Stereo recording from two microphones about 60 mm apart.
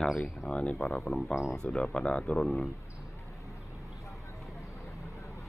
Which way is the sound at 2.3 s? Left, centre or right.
Centre.